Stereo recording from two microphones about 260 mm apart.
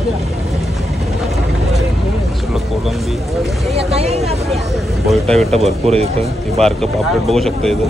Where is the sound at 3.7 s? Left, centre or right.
Right.